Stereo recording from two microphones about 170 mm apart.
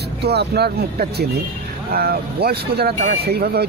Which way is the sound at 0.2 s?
75° right (ahead or behind).